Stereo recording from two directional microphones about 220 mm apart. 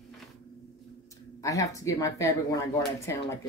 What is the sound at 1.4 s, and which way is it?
Speech, 15° left (ahead or behind).